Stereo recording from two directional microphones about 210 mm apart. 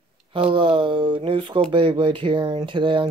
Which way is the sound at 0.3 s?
25° right (ahead or behind).